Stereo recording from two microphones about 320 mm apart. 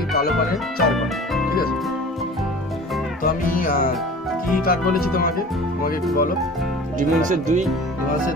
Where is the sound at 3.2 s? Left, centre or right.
Left.